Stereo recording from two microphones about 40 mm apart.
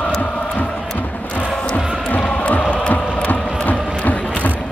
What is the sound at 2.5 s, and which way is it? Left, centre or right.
Music, left.